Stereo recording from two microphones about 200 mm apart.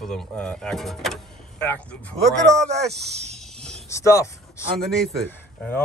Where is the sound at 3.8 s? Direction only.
15° left (ahead or behind).